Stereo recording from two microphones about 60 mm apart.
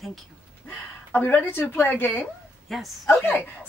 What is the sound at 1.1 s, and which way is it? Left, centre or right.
A woman's voice, left.